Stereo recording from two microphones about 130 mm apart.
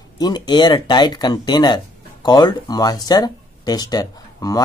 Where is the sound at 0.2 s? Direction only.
35° left (ahead or behind).